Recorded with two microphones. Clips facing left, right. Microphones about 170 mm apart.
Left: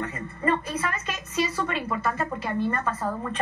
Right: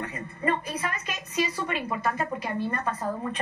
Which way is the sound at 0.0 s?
15° right (ahead or behind).